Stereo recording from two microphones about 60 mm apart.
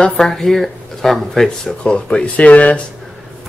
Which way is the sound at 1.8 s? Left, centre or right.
Centre.